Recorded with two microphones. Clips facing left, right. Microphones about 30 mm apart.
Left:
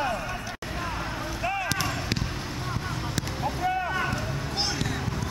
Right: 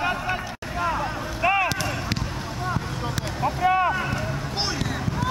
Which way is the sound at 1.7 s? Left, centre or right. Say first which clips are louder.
Right 2 dB; centre.